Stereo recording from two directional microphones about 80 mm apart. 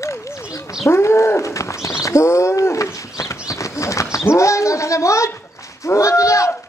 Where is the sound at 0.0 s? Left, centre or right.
Left.